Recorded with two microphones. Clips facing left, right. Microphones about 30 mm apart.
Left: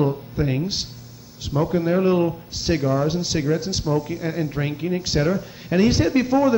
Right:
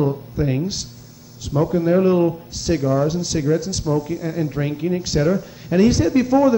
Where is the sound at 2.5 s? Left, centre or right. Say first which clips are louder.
Even; centre.